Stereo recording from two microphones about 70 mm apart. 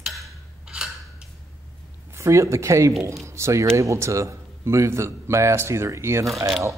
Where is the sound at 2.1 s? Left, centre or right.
Right.